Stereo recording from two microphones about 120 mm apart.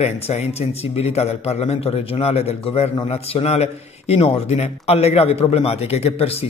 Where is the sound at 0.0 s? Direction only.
65° left (ahead or behind).